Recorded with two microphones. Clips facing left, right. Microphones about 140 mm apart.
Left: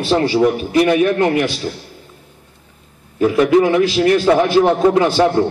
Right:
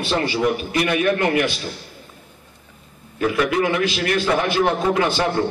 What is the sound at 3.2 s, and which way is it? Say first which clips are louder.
A man's voice: left 7 dB; 35° left (ahead or behind).